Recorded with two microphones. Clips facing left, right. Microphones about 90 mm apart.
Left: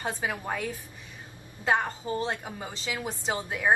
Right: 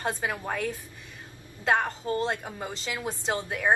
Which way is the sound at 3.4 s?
5° left (ahead or behind).